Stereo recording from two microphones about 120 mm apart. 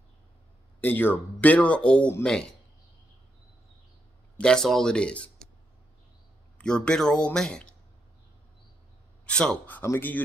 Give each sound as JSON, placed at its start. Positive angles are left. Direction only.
{"t": 0.7, "sound": "speech", "side_deg": 15}
{"t": 4.4, "sound": "speech", "side_deg": 5}
{"t": 6.6, "sound": "speech", "side_deg": 5}
{"t": 9.2, "sound": "a man's voice", "side_deg": 5}
{"t": 9.8, "sound": "speech", "side_deg": 20}